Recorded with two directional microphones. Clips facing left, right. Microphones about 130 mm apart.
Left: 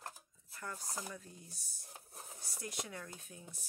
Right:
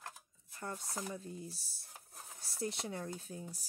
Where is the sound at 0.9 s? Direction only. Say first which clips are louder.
Right 4 dB; 25° right (ahead or behind).